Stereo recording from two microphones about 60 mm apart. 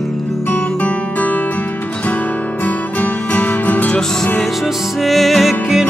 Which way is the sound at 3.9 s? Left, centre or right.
Centre.